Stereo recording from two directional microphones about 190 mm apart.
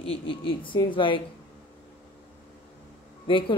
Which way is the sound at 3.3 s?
25° left (ahead or behind).